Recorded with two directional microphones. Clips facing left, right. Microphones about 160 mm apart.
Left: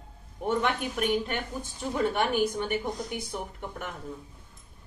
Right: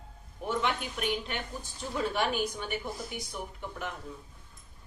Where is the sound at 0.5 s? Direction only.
50° left (ahead or behind).